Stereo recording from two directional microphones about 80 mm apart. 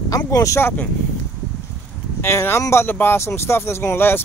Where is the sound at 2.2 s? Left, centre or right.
Left.